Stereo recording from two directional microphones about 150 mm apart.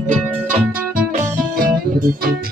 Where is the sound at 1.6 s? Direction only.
75° right (ahead or behind).